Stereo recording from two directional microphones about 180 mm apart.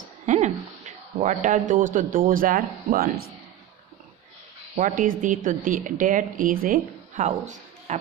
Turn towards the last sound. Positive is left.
turn(degrees=-40)  # may be behind; listen again after turning